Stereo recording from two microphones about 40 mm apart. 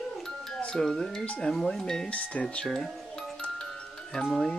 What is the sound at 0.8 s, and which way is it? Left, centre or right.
Speech, centre.